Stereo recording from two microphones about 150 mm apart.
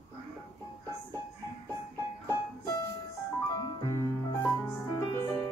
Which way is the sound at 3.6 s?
20° left (ahead or behind).